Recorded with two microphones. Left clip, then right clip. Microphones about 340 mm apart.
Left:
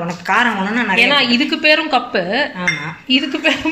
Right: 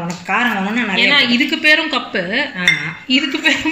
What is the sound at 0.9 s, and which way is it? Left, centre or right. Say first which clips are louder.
Speech: even; centre.